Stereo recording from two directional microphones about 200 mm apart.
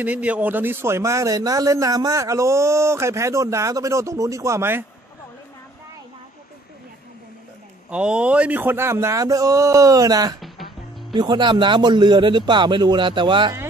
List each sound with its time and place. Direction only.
0.0 s a man's voice: 5° right (ahead or behind)
7.9 s a man's voice: 5° right (ahead or behind)
10.4 s music: centre (ahead or behind)
11.1 s a man's voice: 20° right (ahead or behind)